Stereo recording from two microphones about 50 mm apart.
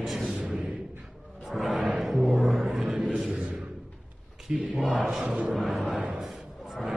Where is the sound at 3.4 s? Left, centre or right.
Right.